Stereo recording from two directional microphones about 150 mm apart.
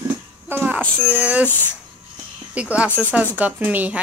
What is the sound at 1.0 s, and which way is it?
Speech, 10° right (ahead or behind).